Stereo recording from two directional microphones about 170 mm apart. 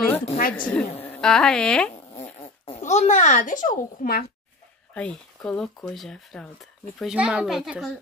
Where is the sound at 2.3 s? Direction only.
35° left (ahead or behind); by 4.2 s 55° left (ahead or behind).